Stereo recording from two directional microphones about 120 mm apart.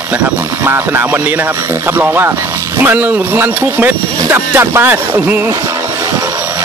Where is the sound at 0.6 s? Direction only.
20° right (ahead or behind).